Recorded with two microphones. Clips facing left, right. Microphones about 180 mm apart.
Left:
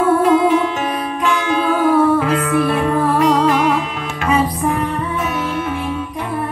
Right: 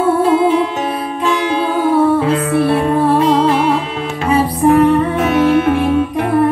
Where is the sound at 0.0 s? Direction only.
30° right (ahead or behind).